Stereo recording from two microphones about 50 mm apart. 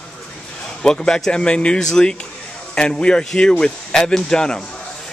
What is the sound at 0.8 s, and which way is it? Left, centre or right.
Speech, centre.